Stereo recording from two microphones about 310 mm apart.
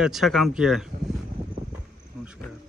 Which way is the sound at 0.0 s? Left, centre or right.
Centre.